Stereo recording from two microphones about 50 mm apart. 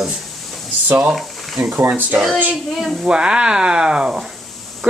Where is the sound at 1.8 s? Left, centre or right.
Right.